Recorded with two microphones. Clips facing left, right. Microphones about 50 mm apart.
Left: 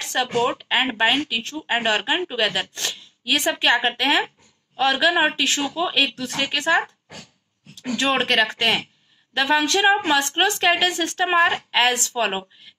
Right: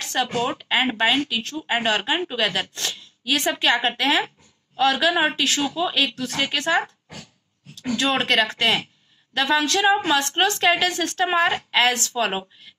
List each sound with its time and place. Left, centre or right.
0.0 s a woman's voice: left